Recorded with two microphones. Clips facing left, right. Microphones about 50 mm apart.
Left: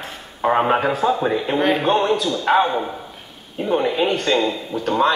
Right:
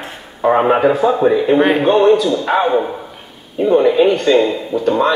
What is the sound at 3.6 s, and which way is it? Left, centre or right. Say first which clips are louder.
Speech: right 8 dB; right.